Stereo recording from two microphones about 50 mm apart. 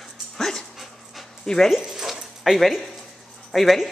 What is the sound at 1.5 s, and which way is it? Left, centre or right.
Speech, centre.